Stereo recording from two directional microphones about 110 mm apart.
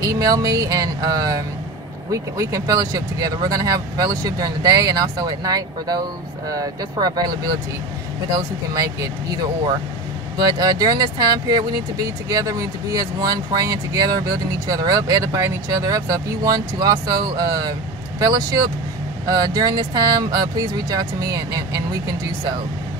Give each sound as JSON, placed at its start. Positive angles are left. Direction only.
{"t": 0.0, "sound": "speech", "side_deg": -30}
{"t": 8.4, "sound": "speech", "side_deg": -30}
{"t": 10.3, "sound": "speech", "side_deg": -35}
{"t": 19.2, "sound": "speech", "side_deg": -35}